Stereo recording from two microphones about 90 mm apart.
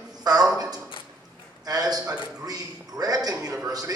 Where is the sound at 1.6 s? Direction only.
45° right (ahead or behind).